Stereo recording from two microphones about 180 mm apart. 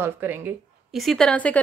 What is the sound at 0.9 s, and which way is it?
Speech, centre (ahead or behind).